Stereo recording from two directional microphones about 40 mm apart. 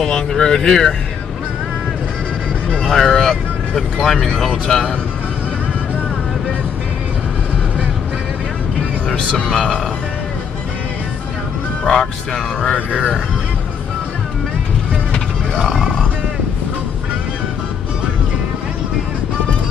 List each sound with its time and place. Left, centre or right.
0.0 s speech: centre
2.9 s speech: centre
11.8 s speech: centre
12.9 s speech: right